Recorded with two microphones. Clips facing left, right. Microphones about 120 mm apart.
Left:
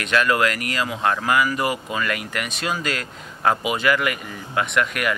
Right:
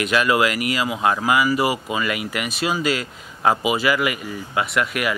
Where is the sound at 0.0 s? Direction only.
5° right (ahead or behind).